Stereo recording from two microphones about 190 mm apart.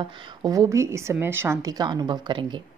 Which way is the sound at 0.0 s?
20° right (ahead or behind).